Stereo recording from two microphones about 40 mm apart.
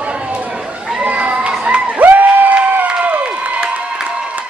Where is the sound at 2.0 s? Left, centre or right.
Right.